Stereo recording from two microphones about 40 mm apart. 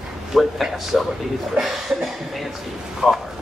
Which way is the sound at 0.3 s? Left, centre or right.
Centre.